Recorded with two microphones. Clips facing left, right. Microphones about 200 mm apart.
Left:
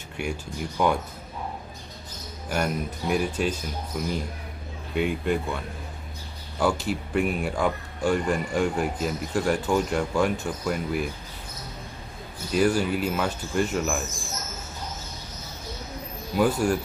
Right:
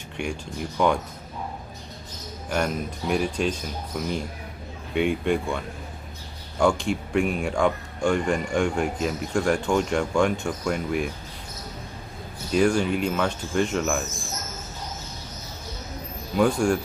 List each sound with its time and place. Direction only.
0.2 s speech: 5° left (ahead or behind)
2.5 s speech: 5° left (ahead or behind)
6.6 s speech: 5° left (ahead or behind)
12.5 s speech: 5° left (ahead or behind)
16.3 s speech: 5° left (ahead or behind)